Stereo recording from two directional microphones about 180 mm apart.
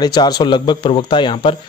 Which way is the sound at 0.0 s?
20° left (ahead or behind).